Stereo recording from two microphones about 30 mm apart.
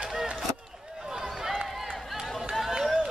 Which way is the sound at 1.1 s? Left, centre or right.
Centre.